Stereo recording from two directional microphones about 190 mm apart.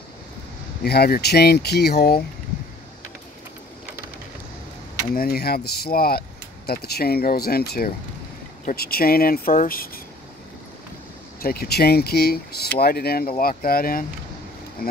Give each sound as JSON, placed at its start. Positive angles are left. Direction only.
{"t": 0.8, "sound": "speech", "side_deg": 55}
{"t": 5.1, "sound": "speech", "side_deg": 55}
{"t": 11.4, "sound": "speech", "side_deg": 55}